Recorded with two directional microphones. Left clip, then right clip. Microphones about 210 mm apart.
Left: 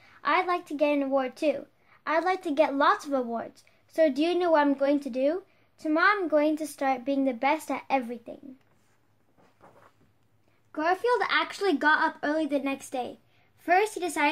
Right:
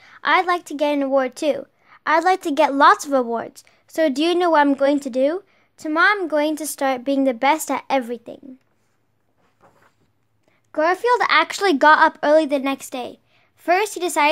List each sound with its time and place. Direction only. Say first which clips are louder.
0.0 s a woman's voice: right 8 dB; 45° right (ahead or behind)
10.7 s a woman's voice: right 8 dB; 50° right (ahead or behind)